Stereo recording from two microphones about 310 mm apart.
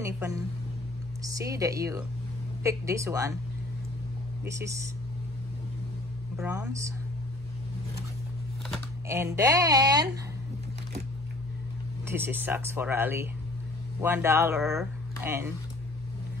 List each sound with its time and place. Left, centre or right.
0.0 s speech: centre
4.5 s speech: centre
6.3 s speech: centre
9.0 s speech: centre
12.1 s speech: centre